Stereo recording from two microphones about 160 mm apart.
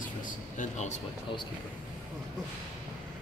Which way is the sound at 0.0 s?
55° left (ahead or behind).